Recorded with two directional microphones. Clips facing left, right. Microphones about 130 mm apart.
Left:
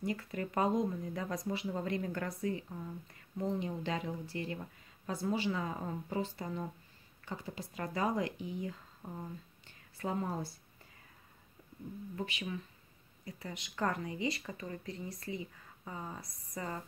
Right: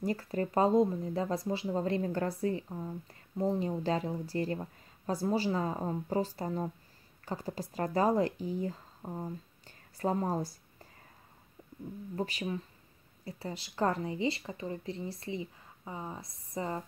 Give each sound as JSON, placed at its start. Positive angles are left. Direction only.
{"t": 0.0, "sound": "a woman's voice", "side_deg": -35}
{"t": 12.2, "sound": "a woman's voice", "side_deg": -35}